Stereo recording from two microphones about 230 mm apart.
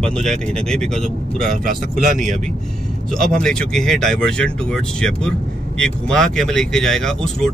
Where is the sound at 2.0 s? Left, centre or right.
Right.